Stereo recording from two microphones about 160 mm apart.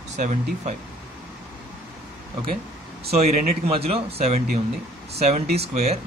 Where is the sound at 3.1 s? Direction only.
40° right (ahead or behind).